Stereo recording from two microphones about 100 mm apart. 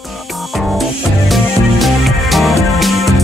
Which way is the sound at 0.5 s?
Centre (ahead or behind).